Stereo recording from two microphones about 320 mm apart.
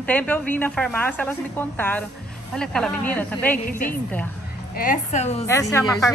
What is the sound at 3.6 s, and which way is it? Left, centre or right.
A woman's voice, left.